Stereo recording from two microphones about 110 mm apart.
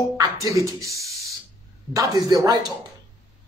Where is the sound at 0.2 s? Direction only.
30° right (ahead or behind).